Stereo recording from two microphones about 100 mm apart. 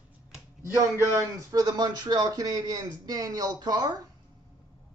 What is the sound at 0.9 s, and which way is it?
Speech, 30° right (ahead or behind).